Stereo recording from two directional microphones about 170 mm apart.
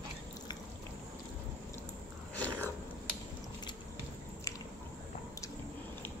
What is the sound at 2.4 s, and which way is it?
Biting, 10° left (ahead or behind).